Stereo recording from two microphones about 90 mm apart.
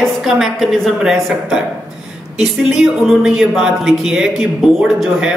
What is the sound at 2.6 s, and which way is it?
A man's voice, 5° right (ahead or behind).